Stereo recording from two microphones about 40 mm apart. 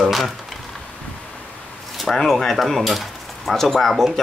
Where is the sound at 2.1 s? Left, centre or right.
Centre.